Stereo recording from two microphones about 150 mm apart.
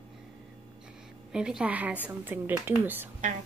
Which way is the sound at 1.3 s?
5° right (ahead or behind).